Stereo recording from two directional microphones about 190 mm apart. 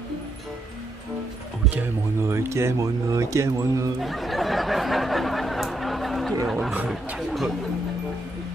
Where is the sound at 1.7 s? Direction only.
10° right (ahead or behind).